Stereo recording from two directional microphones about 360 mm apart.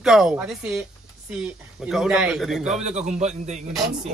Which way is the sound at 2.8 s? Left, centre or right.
Centre.